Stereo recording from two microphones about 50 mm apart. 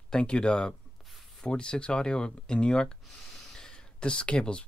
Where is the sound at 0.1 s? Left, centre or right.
Centre.